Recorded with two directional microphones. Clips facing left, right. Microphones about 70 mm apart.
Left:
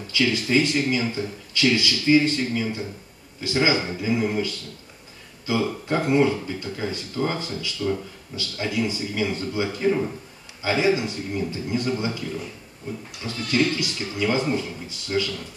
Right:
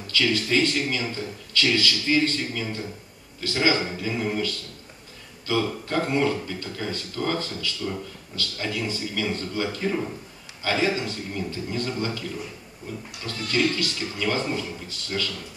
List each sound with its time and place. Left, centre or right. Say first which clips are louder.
0.0 s speech: left 1 dB; centre
5.5 s speech: left 2 dB; centre
13.3 s speech: left 2 dB; centre